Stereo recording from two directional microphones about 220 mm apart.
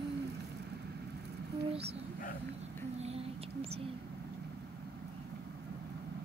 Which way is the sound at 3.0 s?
25° right (ahead or behind).